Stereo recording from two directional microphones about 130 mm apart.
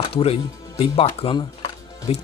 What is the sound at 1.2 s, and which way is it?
Music, 50° left (ahead or behind).